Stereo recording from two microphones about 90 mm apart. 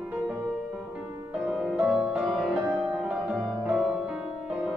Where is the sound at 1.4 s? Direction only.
5° right (ahead or behind).